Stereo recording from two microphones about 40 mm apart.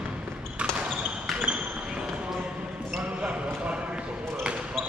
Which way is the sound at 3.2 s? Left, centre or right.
Right.